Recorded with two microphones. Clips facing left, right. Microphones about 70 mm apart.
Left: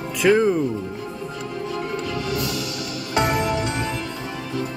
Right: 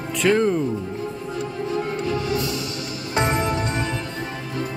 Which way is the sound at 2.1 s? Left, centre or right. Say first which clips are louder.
Right 2 dB; right.